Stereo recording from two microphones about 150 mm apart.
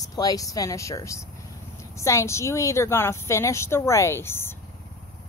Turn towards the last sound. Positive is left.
turn(degrees=15)  # may be behind; listen again after turning